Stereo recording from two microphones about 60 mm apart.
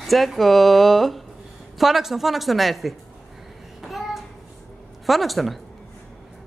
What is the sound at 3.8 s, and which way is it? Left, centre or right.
Child singing, centre.